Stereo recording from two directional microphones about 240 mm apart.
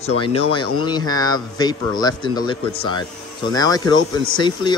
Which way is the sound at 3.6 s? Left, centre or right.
Centre.